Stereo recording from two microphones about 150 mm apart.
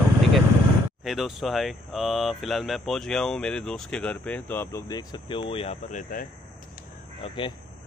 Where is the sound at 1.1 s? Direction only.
Centre (ahead or behind).